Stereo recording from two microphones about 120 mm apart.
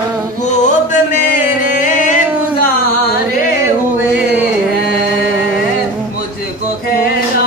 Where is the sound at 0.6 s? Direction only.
90° left.